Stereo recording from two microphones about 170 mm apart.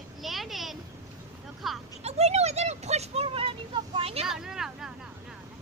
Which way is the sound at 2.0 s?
40° right (ahead or behind).